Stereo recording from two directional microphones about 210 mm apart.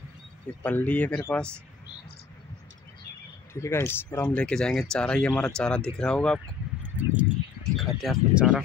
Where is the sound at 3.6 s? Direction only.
10° left (ahead or behind).